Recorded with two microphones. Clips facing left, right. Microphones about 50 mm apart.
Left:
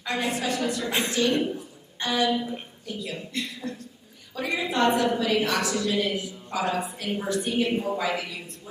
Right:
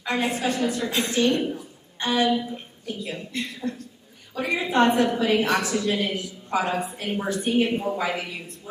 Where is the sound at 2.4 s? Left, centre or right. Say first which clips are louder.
Left 1 dB; left.